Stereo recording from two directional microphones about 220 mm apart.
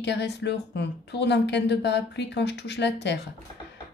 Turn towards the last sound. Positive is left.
turn(degrees=50)  # may be behind; listen again after turning